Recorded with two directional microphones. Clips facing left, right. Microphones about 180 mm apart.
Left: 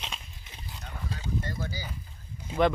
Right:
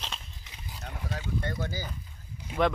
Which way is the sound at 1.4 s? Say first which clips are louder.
Right 2 dB; 60° right (ahead or behind).